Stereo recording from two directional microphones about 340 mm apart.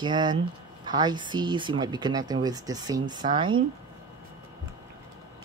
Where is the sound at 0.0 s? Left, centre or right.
Centre.